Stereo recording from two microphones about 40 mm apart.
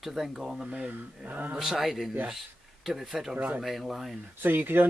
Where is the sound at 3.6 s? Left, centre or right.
Centre.